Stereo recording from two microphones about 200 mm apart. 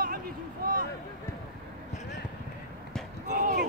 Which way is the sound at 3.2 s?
45° right (ahead or behind).